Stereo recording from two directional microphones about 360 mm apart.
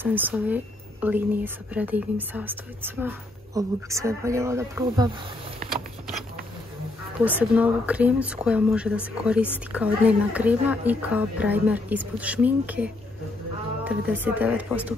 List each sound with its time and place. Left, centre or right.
0.0 s speech: centre
7.2 s speech: centre